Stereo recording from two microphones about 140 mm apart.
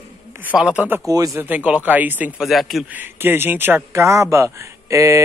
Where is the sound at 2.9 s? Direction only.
15° right (ahead or behind).